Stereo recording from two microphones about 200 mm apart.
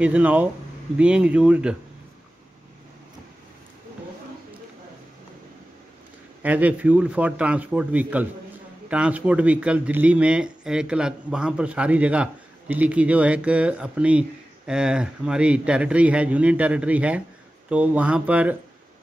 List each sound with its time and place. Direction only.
0.0 s a man's voice: 5° right (ahead or behind)
6.4 s a man's voice: 5° right (ahead or behind)